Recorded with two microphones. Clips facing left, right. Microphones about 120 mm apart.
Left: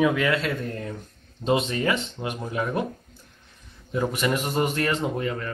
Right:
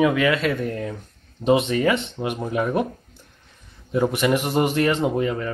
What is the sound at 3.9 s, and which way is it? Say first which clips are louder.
Speech: right 5 dB; 5° right (ahead or behind).